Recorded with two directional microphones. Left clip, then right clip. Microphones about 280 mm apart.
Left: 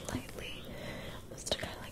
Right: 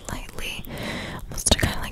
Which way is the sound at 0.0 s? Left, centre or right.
Right.